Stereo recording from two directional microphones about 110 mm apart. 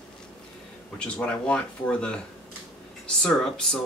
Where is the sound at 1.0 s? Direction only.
10° left (ahead or behind).